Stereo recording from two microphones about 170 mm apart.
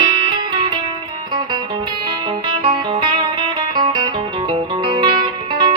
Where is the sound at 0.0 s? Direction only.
25° right (ahead or behind).